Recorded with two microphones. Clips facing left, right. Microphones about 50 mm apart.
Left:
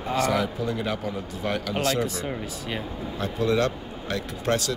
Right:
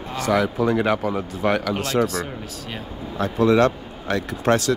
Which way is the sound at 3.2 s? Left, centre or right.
Right.